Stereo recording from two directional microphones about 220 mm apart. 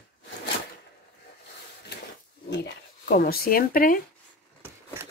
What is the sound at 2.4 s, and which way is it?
Speech, 45° left (ahead or behind).